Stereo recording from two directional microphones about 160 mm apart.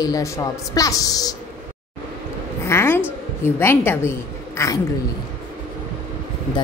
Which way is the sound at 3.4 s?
15° left (ahead or behind).